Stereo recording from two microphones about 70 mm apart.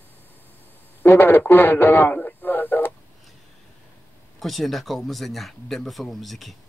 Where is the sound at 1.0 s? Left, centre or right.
Left.